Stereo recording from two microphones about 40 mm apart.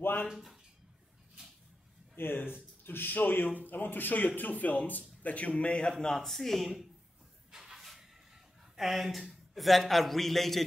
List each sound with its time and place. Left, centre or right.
0.3 s speech: centre
2.1 s speech: left
5.9 s a man's voice: centre
6.2 s a man's voice: centre
7.5 s a sound: centre
8.7 s a man's voice: centre